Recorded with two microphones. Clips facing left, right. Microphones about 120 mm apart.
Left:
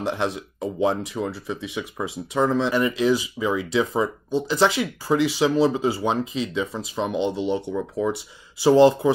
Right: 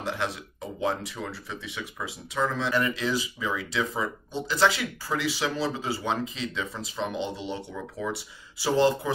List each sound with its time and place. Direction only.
0.7 s speech: 20° left (ahead or behind)